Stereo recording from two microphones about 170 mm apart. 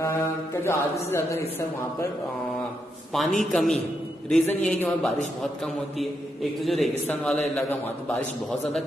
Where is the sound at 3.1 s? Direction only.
Centre (ahead or behind).